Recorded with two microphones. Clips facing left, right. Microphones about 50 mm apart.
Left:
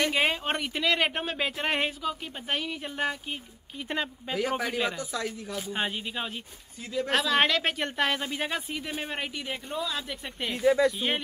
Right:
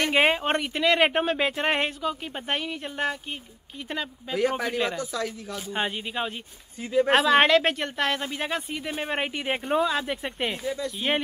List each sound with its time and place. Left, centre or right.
0.0 s speech: centre
3.9 s speech: centre
4.4 s speech: centre
6.9 s speech: right
7.2 s speech: centre
9.2 s speech: right
10.5 s speech: centre